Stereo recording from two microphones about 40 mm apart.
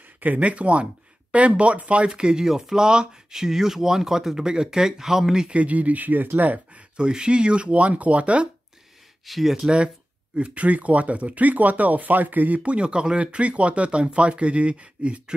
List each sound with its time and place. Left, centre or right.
0.2 s speech: right; by 5.5 s centre
5.5 s speech: right
7.0 s speech: right
9.2 s speech: centre
10.3 s speech: right
12.5 s speech: right